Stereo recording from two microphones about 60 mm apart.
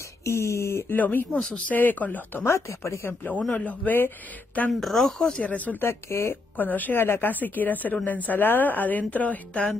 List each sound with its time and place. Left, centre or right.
0.2 s speech: left
0.9 s a woman's voice: left
2.4 s speech: left
3.1 s a woman's voice: left
4.7 s speech: centre
5.4 s a woman's voice: left
5.8 s speech: left
6.5 s a woman's voice: left